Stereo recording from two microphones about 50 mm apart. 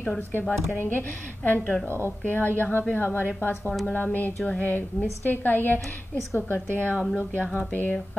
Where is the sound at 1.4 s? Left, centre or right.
Left.